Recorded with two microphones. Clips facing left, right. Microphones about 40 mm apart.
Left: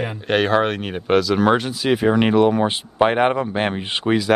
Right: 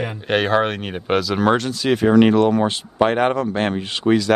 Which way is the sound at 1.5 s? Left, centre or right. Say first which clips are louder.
Even; centre.